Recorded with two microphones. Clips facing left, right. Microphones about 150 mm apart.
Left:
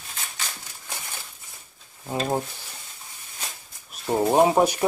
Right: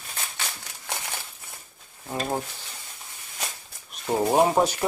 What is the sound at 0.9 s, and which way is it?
Crumpling, 80° right.